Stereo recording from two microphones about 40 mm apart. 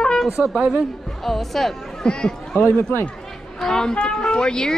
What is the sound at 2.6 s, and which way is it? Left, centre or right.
Speech, left.